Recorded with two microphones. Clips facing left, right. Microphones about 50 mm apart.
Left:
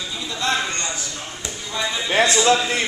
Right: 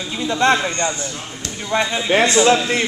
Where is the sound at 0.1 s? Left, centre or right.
Right.